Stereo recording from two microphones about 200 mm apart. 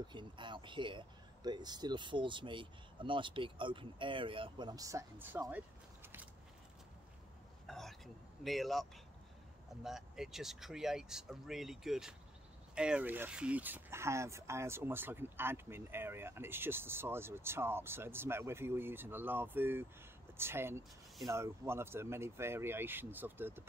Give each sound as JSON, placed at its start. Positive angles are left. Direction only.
{"t": 0.0, "sound": "speech", "side_deg": -25}
{"t": 7.6, "sound": "speech", "side_deg": 0}
{"t": 9.8, "sound": "speech", "side_deg": 0}